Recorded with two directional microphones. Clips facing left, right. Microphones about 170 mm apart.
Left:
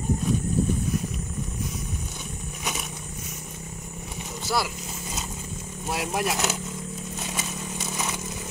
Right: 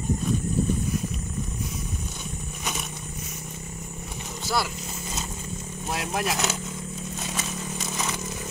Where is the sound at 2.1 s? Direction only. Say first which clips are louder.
Right 1 dB; 5° left (ahead or behind).